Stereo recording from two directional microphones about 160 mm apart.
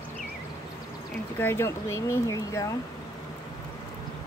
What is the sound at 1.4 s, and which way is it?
Speech, 15° left (ahead or behind).